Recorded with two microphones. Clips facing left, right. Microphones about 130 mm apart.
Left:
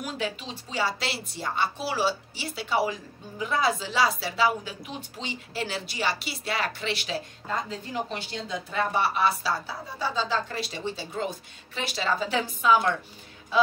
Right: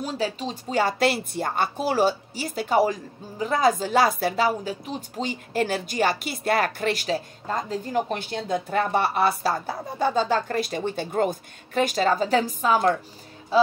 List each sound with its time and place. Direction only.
0.0 s a woman's voice: 35° right (ahead or behind)
13.5 s music: 35° right (ahead or behind)